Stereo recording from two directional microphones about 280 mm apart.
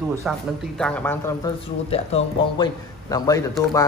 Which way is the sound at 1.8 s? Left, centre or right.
Left.